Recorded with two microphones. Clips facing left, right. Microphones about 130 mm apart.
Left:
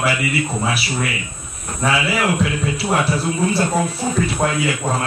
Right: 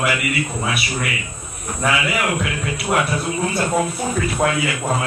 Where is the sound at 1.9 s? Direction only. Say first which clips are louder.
Left 3 dB; 30° left (ahead or behind).